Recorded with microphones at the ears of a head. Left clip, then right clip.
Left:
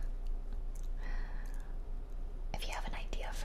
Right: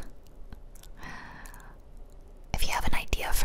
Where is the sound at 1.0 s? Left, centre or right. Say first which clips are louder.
Right 9 dB; right.